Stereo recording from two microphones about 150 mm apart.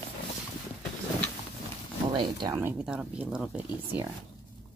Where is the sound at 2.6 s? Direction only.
5° right (ahead or behind).